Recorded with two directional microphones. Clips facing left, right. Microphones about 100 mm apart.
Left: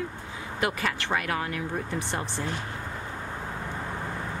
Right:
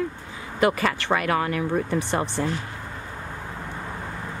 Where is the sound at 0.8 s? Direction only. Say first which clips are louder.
Right 5 dB; 90° right; by 1.6 s 70° right (ahead or behind).